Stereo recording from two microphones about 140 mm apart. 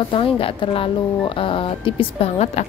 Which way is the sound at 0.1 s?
40° left (ahead or behind).